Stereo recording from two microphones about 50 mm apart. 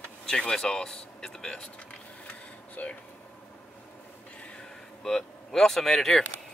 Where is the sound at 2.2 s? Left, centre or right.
Left.